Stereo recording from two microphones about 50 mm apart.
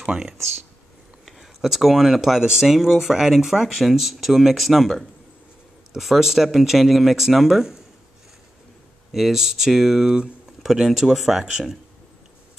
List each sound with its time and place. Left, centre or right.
0.0 s speech: centre
1.2 s speech: centre
9.1 s speech: centre